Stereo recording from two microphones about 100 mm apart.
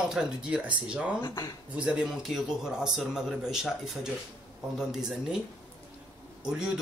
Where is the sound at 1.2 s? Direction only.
35° left (ahead or behind).